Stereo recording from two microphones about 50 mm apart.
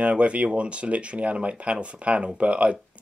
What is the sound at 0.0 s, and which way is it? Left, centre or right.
Speech, right.